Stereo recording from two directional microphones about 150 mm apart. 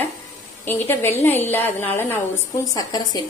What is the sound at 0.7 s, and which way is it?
A woman's voice, 15° left (ahead or behind).